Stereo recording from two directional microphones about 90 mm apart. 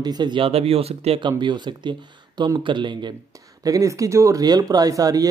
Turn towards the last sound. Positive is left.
turn(degrees=-40)  # may be behind; listen again after turning